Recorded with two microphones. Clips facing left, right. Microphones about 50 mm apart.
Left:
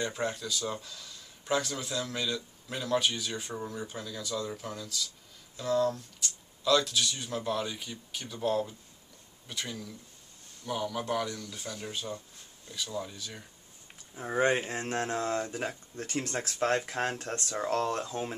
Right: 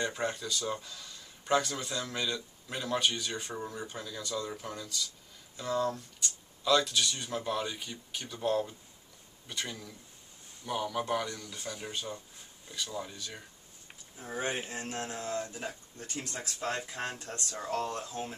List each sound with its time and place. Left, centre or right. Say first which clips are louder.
0.0 s speech: left 1 dB; centre
14.1 s speech: left 8 dB; left